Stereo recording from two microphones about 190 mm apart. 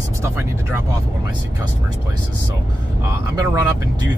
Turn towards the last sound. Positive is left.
turn(degrees=-20)  # may be behind; listen again after turning